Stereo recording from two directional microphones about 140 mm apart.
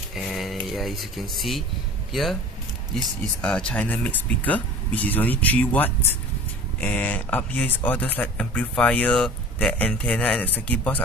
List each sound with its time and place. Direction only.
0.1 s a sound: centre (ahead or behind)
0.7 s speech: centre (ahead or behind)
3.3 s speech: 5° left (ahead or behind)